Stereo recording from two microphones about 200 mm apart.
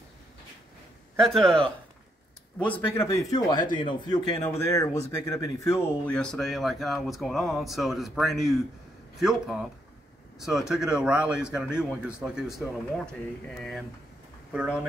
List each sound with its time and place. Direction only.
1.2 s speech: centre (ahead or behind)
14.5 s speech: 5° right (ahead or behind)